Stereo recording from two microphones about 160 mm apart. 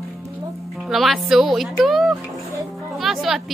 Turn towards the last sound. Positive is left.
turn(degrees=0)  # may be behind; listen again after turning